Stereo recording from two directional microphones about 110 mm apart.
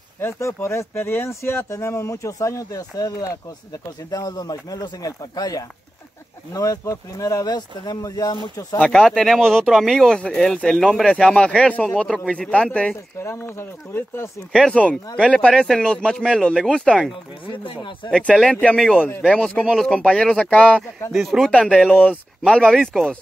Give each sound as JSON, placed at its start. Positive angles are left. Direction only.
{"t": 0.2, "sound": "speech", "side_deg": 25}
{"t": 8.7, "sound": "speech", "side_deg": 5}
{"t": 13.2, "sound": "speech", "side_deg": 25}
{"t": 14.5, "sound": "speech", "side_deg": 0}
{"t": 17.6, "sound": "speech", "side_deg": 45}
{"t": 18.1, "sound": "speech", "side_deg": 5}
{"t": 21.1, "sound": "speech", "side_deg": 0}
{"t": 21.5, "sound": "speech", "side_deg": 10}